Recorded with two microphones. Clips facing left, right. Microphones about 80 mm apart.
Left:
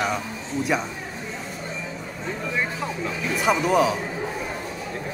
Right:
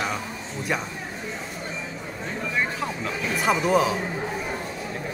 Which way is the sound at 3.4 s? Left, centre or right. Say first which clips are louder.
Left 1 dB; centre.